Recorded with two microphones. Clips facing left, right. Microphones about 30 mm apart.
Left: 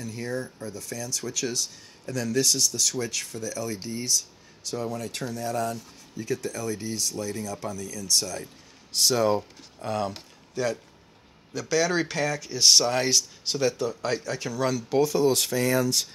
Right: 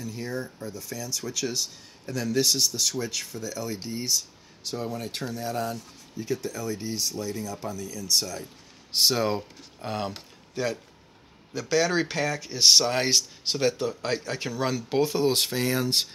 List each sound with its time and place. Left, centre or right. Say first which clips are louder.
0.0 s speech: left 1 dB; centre
1.5 s speech: even; centre
2.4 s speech: even; right
2.9 s speech: left 1 dB; centre
9.1 s speech: left 3 dB; centre; by 16.1 s right